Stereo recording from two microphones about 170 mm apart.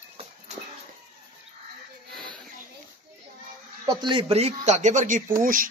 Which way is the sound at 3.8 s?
25° right (ahead or behind).